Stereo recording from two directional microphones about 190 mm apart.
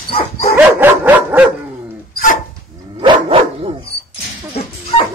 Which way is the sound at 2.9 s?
30° right (ahead or behind).